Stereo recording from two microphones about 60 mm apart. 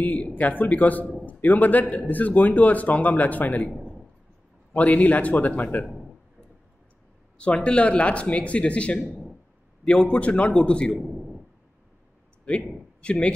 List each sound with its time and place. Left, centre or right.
0.0 s a man's voice: left
4.7 s a man's voice: left
7.6 s a man's voice: centre
13.0 s a man's voice: centre